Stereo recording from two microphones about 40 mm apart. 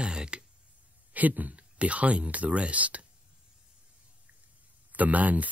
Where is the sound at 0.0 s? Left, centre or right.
Right.